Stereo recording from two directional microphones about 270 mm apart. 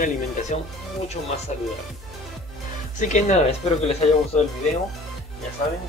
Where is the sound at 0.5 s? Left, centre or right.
Left.